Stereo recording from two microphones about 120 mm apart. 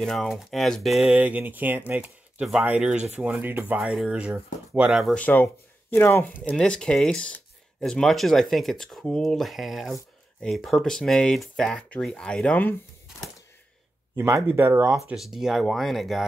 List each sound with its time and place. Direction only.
0.0 s speech: 5° left (ahead or behind)
5.1 s speech: 15° left (ahead or behind)
6.5 s speech: 5° left (ahead or behind)
14.1 s speech: 25° right (ahead or behind)
15.1 s speech: 5° right (ahead or behind)